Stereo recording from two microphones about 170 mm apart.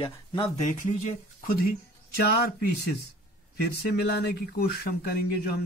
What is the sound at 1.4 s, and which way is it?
Speech, 55° left (ahead or behind).